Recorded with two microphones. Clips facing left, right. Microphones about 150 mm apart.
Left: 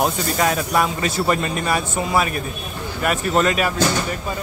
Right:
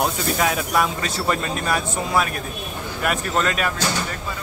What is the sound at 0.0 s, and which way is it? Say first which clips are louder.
Speech: left 2 dB; centre (ahead or behind).